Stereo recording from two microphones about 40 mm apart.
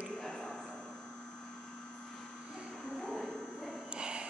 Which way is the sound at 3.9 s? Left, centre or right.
Right.